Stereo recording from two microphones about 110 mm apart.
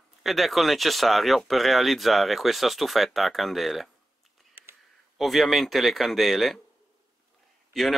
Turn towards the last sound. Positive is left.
turn(degrees=0)  # may be behind; listen again after turning